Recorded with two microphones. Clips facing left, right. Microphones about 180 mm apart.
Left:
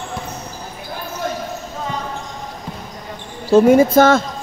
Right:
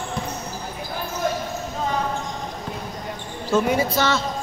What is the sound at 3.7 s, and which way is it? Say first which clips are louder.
Speech: left 10 dB; 50° left (ahead or behind).